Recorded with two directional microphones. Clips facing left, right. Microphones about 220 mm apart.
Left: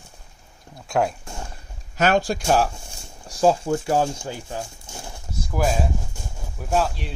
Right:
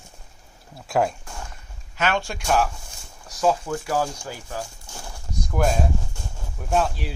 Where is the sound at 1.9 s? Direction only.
40° left (ahead or behind); by 5.2 s 25° left (ahead or behind).